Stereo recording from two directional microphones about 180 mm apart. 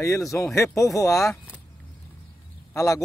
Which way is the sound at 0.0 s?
15° left (ahead or behind).